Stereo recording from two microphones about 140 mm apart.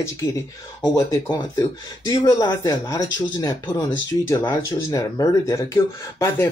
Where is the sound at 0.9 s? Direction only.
25° left (ahead or behind).